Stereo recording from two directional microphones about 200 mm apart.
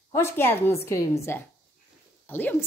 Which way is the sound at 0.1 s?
10° left (ahead or behind).